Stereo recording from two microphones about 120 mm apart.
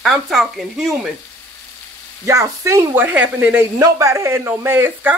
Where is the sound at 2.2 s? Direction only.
25° right (ahead or behind).